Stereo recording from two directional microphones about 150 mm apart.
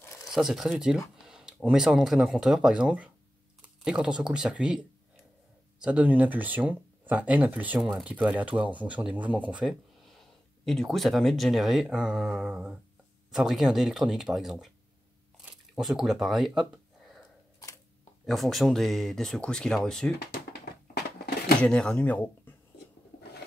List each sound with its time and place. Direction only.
0.0 s a sound: 20° left (ahead or behind)
0.3 s speech: centre (ahead or behind)
18.2 s speech: centre (ahead or behind)
21.6 s speech: 5° left (ahead or behind)